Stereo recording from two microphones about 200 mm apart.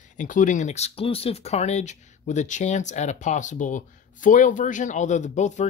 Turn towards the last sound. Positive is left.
turn(degrees=35)  # may be behind; listen again after turning